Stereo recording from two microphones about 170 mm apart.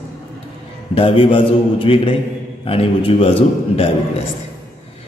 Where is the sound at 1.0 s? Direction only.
30° left (ahead or behind).